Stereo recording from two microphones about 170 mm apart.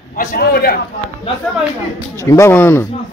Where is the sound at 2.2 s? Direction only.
15° left (ahead or behind).